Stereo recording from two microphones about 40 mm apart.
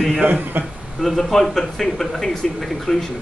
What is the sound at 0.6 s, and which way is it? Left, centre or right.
Speech, right.